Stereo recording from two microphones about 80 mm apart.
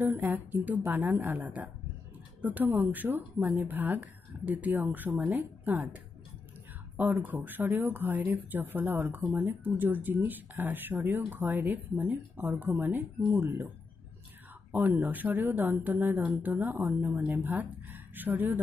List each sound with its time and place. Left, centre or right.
0.0 s speech: right
7.0 s speech: right
14.7 s speech: right